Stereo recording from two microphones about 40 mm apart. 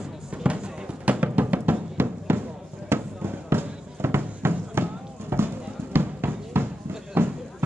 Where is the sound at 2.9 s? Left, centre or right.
Right.